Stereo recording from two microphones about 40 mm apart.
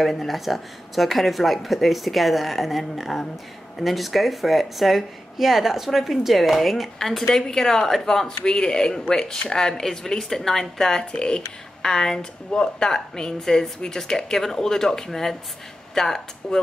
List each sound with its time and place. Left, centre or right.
0.0 s a woman's voice: centre